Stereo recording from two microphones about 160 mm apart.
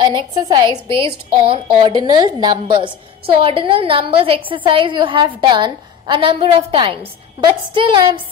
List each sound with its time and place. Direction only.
0.0 s a woman's voice: 30° right (ahead or behind)